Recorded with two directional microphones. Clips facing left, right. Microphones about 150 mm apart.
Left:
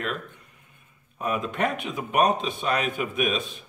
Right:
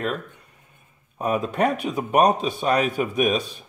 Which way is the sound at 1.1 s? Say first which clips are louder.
Right 4 dB; 40° right (ahead or behind).